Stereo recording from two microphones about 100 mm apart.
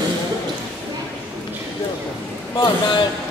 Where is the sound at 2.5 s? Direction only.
55° left (ahead or behind).